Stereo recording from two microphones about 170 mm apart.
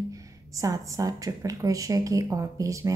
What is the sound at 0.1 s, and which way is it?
Speech, 20° right (ahead or behind).